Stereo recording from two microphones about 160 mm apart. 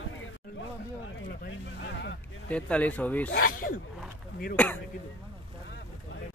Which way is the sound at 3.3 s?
65° left (ahead or behind).